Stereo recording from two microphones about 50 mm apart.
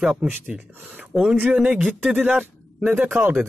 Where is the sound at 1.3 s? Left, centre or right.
Right.